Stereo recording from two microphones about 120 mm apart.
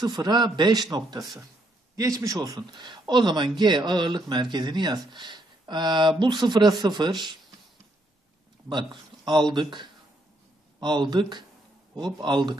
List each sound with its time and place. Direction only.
0.0 s a man's voice: 35° right (ahead or behind)
9.2 s a man's voice: 40° right (ahead or behind)